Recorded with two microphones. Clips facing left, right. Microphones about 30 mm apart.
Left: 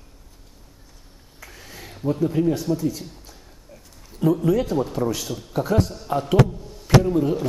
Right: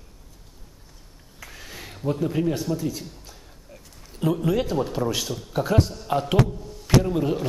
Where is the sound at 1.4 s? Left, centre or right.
Right.